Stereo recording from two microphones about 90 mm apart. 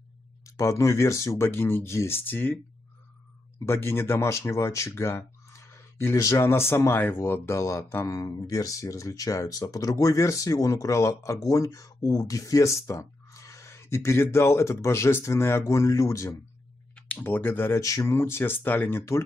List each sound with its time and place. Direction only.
0.6 s speech: 35° left (ahead or behind)
3.6 s speech: 30° left (ahead or behind)
16.9 s speech: 15° left (ahead or behind)
17.7 s speech: 35° left (ahead or behind)
18.0 s speech: 25° left (ahead or behind)